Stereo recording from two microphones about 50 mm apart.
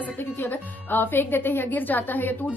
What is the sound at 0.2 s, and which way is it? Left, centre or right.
A woman's voice, left.